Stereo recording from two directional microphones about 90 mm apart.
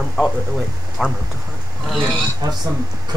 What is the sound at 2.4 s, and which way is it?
Speech, 45° right (ahead or behind).